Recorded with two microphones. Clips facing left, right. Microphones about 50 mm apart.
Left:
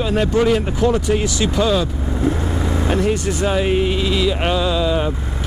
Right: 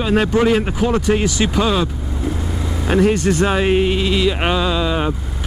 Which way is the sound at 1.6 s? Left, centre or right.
Centre.